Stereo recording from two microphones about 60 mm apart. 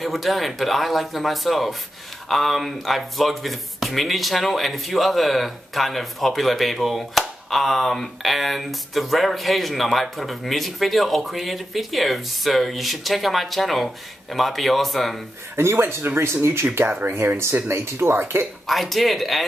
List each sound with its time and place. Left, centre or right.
0.0 s speech: centre
15.5 s speech: right
18.7 s speech: centre